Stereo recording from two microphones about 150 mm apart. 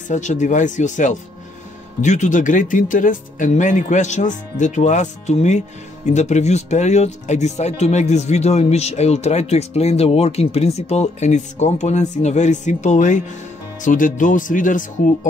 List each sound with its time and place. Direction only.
0.1 s speech: 55° left (ahead or behind)